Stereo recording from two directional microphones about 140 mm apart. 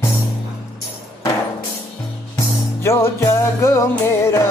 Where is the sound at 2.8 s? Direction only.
20° left (ahead or behind).